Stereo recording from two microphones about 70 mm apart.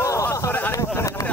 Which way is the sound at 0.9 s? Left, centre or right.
Left.